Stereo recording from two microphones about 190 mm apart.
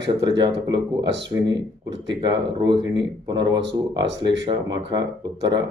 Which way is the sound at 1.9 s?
70° right (ahead or behind).